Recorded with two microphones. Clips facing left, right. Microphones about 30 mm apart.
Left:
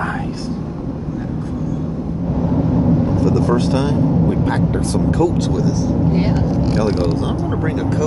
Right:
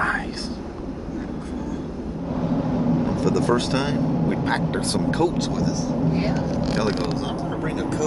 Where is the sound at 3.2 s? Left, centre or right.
Right.